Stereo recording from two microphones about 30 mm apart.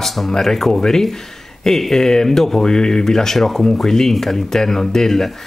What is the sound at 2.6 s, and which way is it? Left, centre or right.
Speech, left.